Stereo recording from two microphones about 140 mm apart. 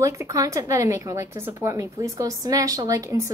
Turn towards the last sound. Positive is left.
turn(degrees=-20)  # may be behind; listen again after turning